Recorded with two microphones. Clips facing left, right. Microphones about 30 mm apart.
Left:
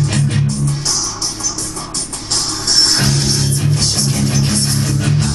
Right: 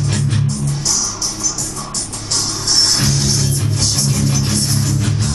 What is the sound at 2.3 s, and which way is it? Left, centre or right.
Music, left.